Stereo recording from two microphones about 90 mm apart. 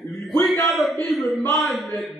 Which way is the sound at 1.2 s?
Centre (ahead or behind).